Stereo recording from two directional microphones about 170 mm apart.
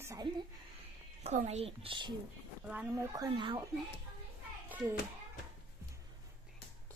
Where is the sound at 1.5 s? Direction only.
35° right (ahead or behind).